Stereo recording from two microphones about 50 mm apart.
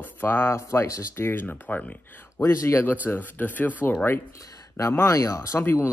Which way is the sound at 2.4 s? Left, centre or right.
Left.